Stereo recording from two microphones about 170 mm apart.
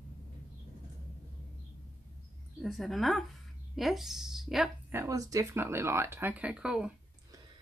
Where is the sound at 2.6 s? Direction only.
Centre (ahead or behind).